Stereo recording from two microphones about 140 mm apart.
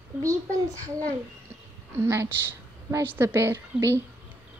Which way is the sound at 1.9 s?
20° right (ahead or behind).